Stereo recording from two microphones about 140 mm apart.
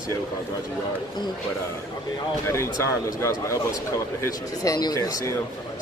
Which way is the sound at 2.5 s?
20° left (ahead or behind).